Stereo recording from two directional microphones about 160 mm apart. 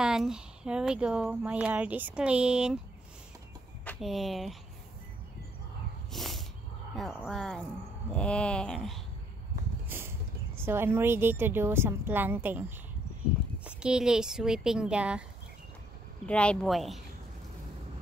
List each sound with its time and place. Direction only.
0.0 s speech: 5° right (ahead or behind)
4.0 s speech: centre (ahead or behind)
6.1 s snort: centre (ahead or behind)
7.0 s speech: centre (ahead or behind)
9.8 s a sound: 15° right (ahead or behind)
10.6 s a woman's voice: 15° right (ahead or behind)
16.3 s speech: 5° left (ahead or behind)